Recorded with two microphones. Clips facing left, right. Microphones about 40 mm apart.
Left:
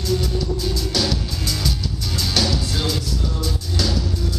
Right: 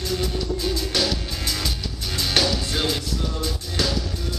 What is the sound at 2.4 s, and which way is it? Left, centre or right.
Music, right.